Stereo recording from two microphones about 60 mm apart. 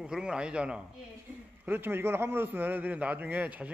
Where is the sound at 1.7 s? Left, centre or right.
Right.